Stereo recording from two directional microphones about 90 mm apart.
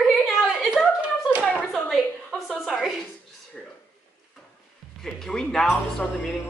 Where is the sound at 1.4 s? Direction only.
15° left (ahead or behind).